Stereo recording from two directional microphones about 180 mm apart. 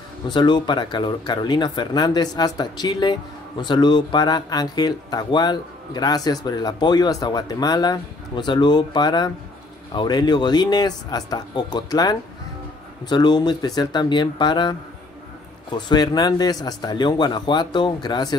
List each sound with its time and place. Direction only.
0.3 s speech: 25° left (ahead or behind)